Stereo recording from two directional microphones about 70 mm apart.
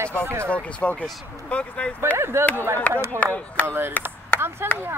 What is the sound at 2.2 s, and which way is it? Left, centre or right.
Speech, right.